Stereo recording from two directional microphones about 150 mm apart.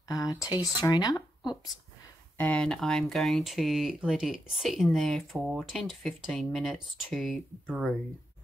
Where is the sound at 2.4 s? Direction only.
10° left (ahead or behind).